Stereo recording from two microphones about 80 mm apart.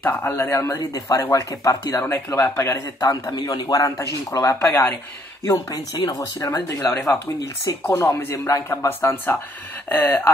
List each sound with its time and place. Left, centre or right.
0.1 s speech: left
2.0 s speech: left
3.3 s speech: left
5.5 s speech: left
6.9 s speech: left
7.9 s speech: left